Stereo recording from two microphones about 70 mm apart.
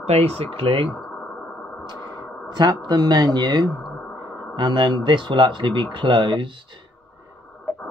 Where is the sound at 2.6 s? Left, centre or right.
Right.